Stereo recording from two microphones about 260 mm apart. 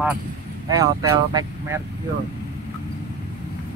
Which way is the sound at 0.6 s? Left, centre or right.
Centre.